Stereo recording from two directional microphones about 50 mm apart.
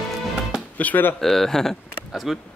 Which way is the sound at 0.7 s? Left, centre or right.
Left.